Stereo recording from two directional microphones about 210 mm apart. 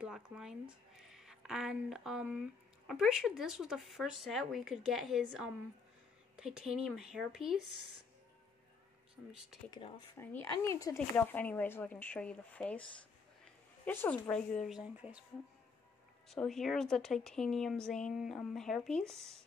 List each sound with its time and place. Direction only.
0.0 s a woman's voice: 5° right (ahead or behind)
9.7 s speech: 25° left (ahead or behind)
10.1 s speech: 10° left (ahead or behind)
13.8 s a woman's voice: 10° left (ahead or behind)
16.3 s a woman's voice: centre (ahead or behind)